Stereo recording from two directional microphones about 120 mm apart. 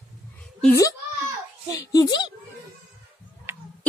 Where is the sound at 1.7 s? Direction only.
30° left (ahead or behind).